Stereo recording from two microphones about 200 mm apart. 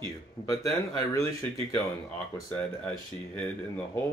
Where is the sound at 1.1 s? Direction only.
15° left (ahead or behind).